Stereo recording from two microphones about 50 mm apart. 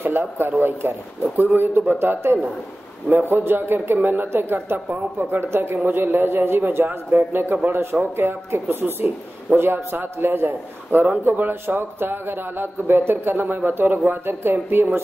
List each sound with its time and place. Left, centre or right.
0.0 s a man's voice: right